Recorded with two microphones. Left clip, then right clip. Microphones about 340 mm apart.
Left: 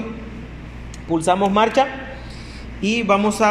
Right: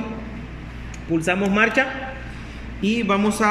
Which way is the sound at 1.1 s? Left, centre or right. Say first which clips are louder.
Left 2 dB; left.